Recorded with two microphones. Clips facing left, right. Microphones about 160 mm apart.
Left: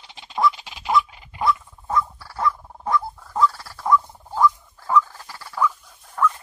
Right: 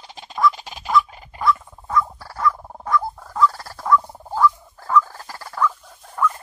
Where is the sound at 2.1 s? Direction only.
45° right (ahead or behind).